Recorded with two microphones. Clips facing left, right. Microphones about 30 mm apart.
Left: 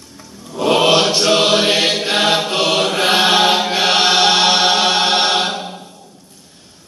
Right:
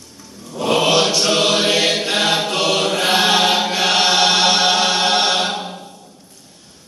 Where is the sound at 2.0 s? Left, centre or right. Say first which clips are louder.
Left 2 dB; centre.